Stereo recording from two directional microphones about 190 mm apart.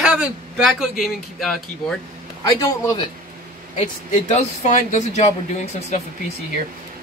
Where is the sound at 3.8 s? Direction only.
35° left (ahead or behind).